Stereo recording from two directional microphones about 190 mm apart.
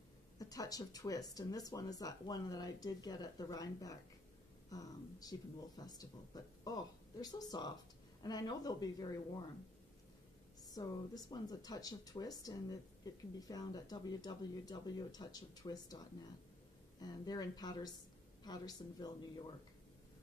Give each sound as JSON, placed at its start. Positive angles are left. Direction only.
{"t": 0.4, "sound": "speech", "side_deg": 20}
{"t": 4.6, "sound": "a sound", "side_deg": 20}
{"t": 5.8, "sound": "speech", "side_deg": 20}
{"t": 10.6, "sound": "speech", "side_deg": 20}
{"t": 17.0, "sound": "speech", "side_deg": 20}